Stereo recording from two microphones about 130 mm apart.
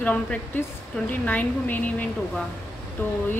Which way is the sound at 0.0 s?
10° left (ahead or behind).